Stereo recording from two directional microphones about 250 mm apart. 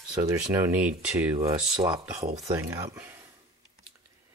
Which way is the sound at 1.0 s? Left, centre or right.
Centre.